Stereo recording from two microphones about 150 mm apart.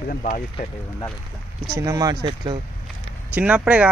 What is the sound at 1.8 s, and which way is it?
Speech, 25° right (ahead or behind).